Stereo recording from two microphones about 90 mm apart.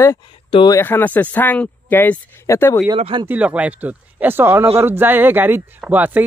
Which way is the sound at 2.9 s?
60° right (ahead or behind).